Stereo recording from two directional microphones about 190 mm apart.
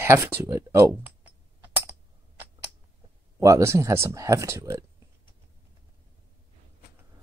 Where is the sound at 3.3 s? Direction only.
15° right (ahead or behind).